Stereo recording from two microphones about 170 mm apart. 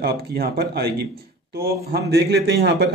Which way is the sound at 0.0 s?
70° right (ahead or behind).